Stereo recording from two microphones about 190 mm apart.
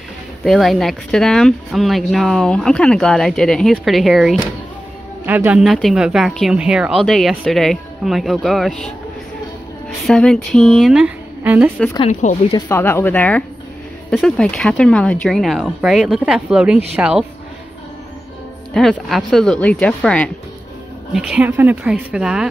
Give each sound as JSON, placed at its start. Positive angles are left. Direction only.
{"t": 0.4, "sound": "speech", "side_deg": 0}
{"t": 10.0, "sound": "speech", "side_deg": 5}
{"t": 12.1, "sound": "speech", "side_deg": 40}
{"t": 12.4, "sound": "speech", "side_deg": 15}
{"t": 18.7, "sound": "speech", "side_deg": 0}